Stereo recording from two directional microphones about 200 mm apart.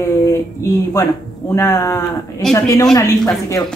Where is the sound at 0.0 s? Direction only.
15° left (ahead or behind).